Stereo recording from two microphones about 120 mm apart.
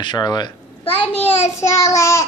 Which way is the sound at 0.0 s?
40° left (ahead or behind).